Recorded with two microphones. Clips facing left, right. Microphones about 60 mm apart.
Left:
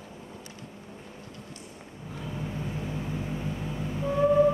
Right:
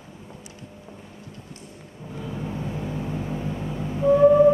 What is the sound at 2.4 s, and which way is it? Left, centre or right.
Music, right.